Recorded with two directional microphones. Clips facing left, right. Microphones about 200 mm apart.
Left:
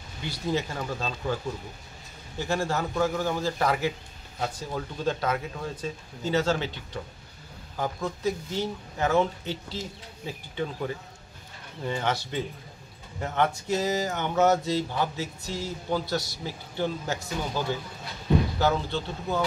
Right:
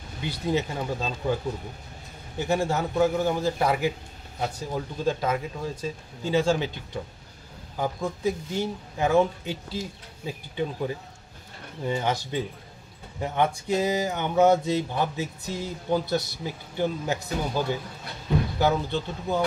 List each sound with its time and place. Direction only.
0.5 s speech: 15° right (ahead or behind)